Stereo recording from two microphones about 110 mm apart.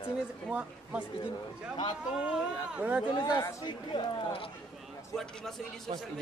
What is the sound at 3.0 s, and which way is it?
Speech, 40° left (ahead or behind).